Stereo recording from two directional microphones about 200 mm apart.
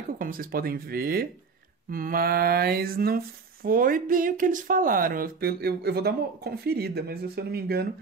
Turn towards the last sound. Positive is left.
turn(degrees=-50)  # may be behind; listen again after turning